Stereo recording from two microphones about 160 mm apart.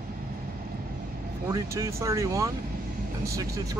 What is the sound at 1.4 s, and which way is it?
Speech, 20° right (ahead or behind).